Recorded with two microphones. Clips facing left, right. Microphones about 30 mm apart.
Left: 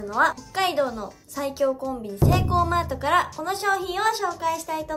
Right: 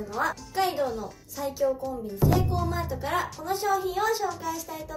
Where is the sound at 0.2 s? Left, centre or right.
Left.